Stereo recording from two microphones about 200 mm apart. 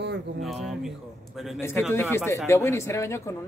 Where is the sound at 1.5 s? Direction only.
15° left (ahead or behind).